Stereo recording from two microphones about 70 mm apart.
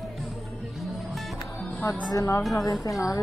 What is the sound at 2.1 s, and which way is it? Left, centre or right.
Speech, left.